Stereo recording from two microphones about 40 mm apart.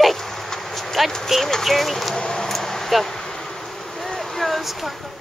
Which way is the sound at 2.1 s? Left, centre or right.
Centre.